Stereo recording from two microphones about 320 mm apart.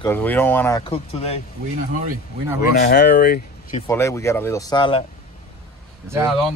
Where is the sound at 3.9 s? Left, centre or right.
Centre.